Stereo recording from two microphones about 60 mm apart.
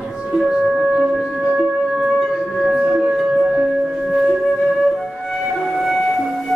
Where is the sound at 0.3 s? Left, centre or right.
Centre.